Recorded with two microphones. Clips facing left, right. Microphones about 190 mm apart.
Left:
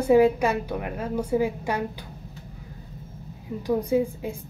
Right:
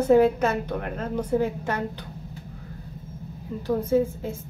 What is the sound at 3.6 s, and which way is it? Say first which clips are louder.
Speech: right 1 dB; 15° left (ahead or behind).